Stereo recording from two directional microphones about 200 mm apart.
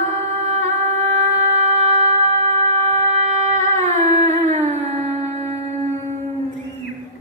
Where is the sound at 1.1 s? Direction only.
35° right (ahead or behind).